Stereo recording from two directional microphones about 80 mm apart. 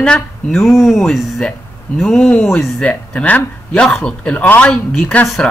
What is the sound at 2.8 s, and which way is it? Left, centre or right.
A man's voice, centre.